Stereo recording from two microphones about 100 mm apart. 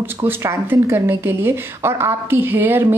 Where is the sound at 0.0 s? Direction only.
25° right (ahead or behind).